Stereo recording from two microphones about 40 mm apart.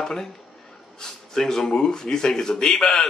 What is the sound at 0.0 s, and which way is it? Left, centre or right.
Speech, centre.